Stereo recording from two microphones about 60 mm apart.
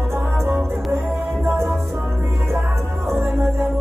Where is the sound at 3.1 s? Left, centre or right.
Right.